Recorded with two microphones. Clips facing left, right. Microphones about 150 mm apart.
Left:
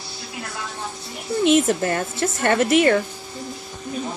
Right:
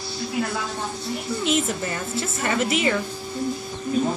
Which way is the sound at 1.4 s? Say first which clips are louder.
Left 8 dB; 55° left (ahead or behind).